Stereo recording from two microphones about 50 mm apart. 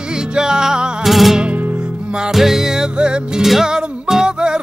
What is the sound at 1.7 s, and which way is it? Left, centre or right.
Music, centre.